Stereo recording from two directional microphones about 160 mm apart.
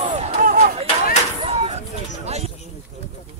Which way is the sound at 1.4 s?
40° right (ahead or behind).